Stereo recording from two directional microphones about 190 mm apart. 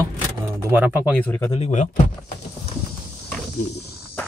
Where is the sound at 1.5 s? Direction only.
35° left (ahead or behind).